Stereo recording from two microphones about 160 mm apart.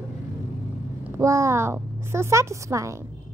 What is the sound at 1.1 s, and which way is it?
A child's voice, 20° right (ahead or behind).